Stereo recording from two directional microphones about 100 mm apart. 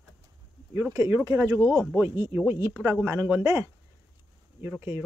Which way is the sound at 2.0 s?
30° right (ahead or behind).